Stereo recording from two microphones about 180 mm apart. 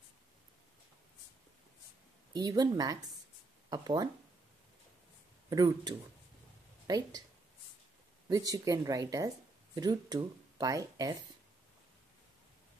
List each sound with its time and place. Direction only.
2.3 s speech: 20° right (ahead or behind)
5.5 s speech: 20° right (ahead or behind)
8.3 s speech: 20° right (ahead or behind)